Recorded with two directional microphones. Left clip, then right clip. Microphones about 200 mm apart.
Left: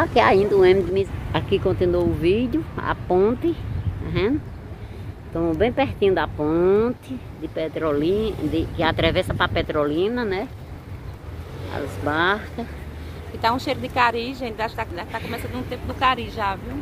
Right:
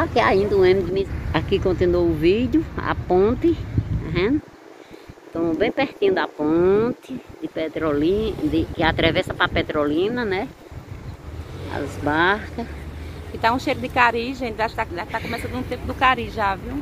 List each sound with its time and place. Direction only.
0.0 s speech: 10° left (ahead or behind)
1.3 s speech: centre (ahead or behind)
5.3 s speech: 5° left (ahead or behind)
11.7 s speech: 10° right (ahead or behind)
13.7 s a woman's voice: 25° right (ahead or behind)